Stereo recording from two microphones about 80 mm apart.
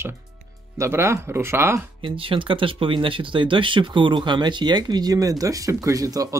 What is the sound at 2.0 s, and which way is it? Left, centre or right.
Speech, right.